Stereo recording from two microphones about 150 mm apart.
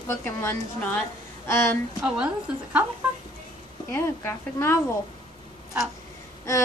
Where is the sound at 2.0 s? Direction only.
5° right (ahead or behind).